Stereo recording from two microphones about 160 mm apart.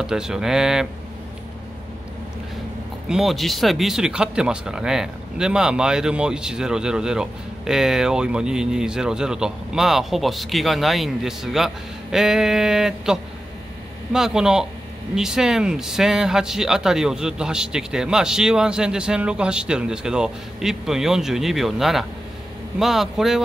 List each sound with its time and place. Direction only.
0.0 s speech: 5° right (ahead or behind)
3.1 s speech: centre (ahead or behind)